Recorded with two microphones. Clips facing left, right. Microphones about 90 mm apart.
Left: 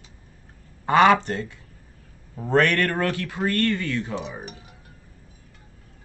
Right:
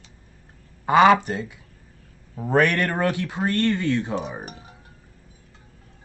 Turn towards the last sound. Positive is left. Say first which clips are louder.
# right 2 dB
turn(degrees=-35)  # may be behind; listen again after turning